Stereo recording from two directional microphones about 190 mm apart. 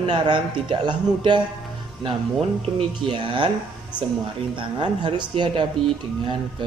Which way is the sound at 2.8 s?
25° right (ahead or behind).